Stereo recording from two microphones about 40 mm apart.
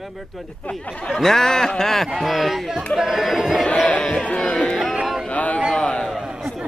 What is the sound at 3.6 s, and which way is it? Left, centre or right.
Speech, left.